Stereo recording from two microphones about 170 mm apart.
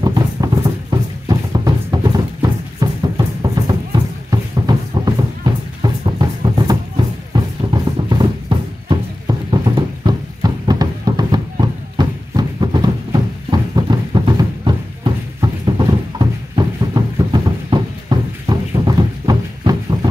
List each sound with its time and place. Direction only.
0.0 s music: 25° right (ahead or behind)